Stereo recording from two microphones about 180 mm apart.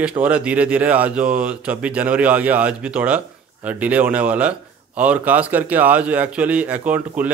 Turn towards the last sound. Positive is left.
turn(degrees=-10)  # may be behind; listen again after turning